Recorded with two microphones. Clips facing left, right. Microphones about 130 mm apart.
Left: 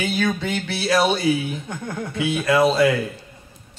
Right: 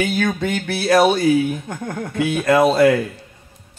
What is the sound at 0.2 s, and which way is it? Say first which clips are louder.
Speech: right 2 dB; 50° right (ahead or behind).